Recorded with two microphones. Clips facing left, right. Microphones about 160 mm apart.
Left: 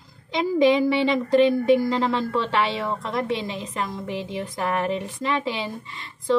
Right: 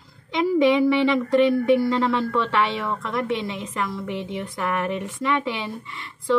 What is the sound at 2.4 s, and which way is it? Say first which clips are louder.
Speech: right 1 dB; 35° left (ahead or behind).